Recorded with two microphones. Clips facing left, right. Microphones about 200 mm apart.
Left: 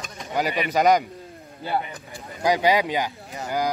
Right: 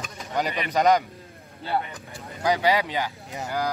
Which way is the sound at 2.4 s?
15° left (ahead or behind).